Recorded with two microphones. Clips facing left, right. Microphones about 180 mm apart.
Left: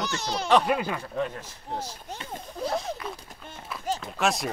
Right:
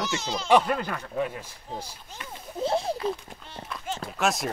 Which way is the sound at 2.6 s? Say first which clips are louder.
Right 4 dB; 30° right (ahead or behind).